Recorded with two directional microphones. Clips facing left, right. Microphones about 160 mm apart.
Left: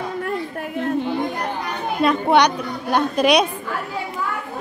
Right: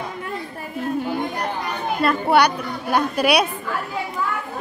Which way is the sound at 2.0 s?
5° right (ahead or behind).